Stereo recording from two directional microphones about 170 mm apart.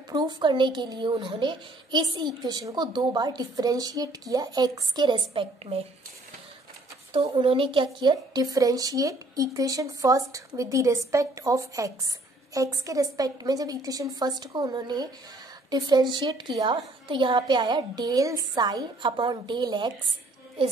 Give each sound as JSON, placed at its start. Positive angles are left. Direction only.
{"t": 0.1, "sound": "a woman's voice", "side_deg": -25}
{"t": 7.1, "sound": "a woman's voice", "side_deg": -30}